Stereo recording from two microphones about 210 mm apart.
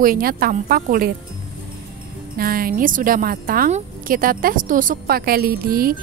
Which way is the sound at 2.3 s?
45° right (ahead or behind).